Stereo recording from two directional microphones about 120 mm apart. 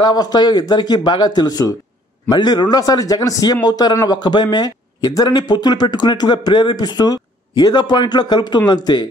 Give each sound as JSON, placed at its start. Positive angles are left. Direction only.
{"t": 0.0, "sound": "a man's voice", "side_deg": 35}